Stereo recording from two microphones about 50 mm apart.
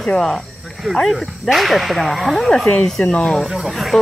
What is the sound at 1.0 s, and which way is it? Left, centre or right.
Speech, centre.